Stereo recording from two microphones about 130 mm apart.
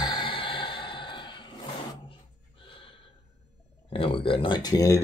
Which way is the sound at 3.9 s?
45° left (ahead or behind).